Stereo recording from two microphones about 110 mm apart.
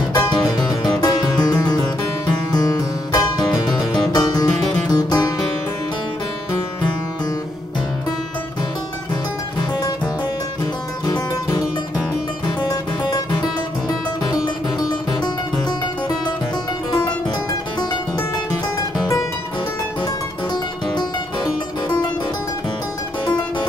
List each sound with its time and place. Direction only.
0.1 s music: 40° left (ahead or behind)
10.6 s music: 35° left (ahead or behind)
23.2 s music: 40° left (ahead or behind)